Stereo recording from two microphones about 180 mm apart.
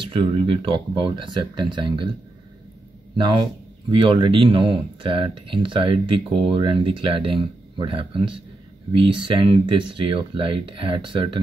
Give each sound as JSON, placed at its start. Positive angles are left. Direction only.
{"t": 0.0, "sound": "speech", "side_deg": -30}
{"t": 3.9, "sound": "speech", "side_deg": -25}